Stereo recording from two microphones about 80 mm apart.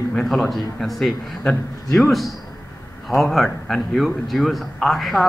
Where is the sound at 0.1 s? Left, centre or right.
Centre.